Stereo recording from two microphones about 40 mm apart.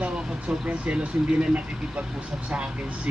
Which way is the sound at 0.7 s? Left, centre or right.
Right.